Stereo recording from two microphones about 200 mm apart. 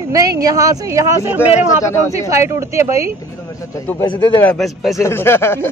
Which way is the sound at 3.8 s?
15° left (ahead or behind).